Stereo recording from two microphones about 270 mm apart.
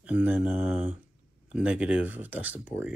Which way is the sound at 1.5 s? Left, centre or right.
Centre.